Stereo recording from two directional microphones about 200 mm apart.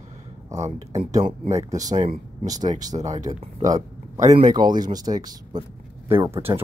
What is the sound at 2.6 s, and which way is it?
Speech, 40° right (ahead or behind).